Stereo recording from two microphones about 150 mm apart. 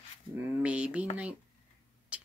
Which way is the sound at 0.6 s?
10° right (ahead or behind).